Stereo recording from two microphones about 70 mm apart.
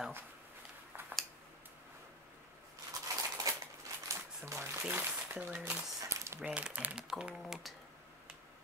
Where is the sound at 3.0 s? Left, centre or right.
Right.